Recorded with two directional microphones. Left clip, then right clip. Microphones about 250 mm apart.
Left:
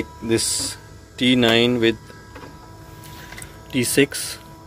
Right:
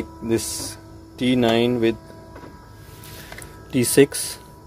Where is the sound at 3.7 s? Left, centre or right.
Right.